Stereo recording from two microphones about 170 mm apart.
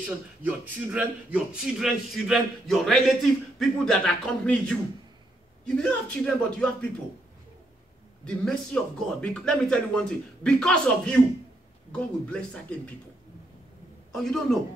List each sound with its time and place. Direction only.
0.0 s a man's voice: 10° right (ahead or behind); by 6.9 s 5° left (ahead or behind)
8.3 s a man's voice: 5° left (ahead or behind)
14.1 s a man's voice: centre (ahead or behind)